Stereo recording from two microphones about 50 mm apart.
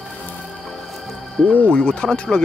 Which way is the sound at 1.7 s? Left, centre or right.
Centre.